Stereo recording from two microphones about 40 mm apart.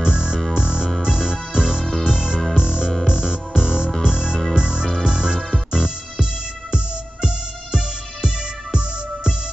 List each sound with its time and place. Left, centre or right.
0.0 s music: right